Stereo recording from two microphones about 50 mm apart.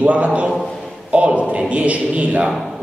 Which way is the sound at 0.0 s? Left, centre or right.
Right.